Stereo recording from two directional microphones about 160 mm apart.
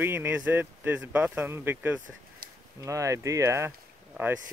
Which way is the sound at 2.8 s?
20° right (ahead or behind).